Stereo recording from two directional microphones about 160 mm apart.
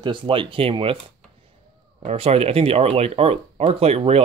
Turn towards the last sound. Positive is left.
turn(degrees=-40)  # may be behind; listen again after turning